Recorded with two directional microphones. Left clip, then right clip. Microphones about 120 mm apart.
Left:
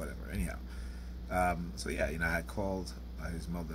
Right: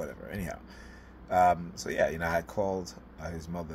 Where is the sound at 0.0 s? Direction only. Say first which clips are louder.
Right 5 dB; 15° left (ahead or behind).